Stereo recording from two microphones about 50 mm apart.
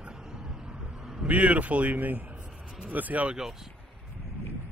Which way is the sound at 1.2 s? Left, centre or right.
Right.